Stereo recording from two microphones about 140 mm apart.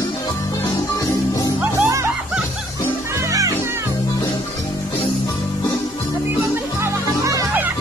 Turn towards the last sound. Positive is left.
turn(degrees=-20)  # may be behind; listen again after turning